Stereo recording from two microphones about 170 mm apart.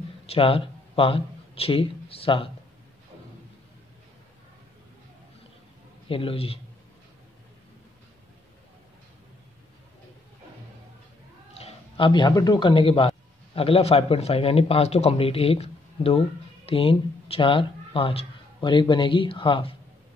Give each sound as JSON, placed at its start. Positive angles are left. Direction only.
{"t": 0.3, "sound": "speech", "side_deg": 35}
{"t": 6.0, "sound": "speech", "side_deg": 35}
{"t": 11.5, "sound": "speech", "side_deg": 35}